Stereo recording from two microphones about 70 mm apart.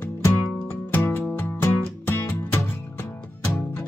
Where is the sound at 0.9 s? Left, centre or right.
Left.